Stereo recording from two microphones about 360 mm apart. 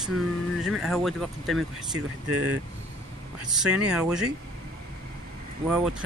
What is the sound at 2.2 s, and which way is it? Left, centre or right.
Speech, right.